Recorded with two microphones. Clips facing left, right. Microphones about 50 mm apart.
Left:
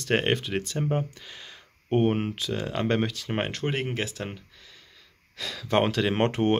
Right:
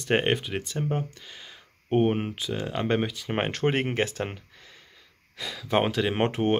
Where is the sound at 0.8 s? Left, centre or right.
Centre.